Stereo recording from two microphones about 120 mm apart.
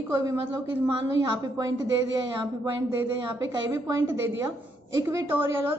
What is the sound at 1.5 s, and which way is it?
A woman's voice, 30° right (ahead or behind).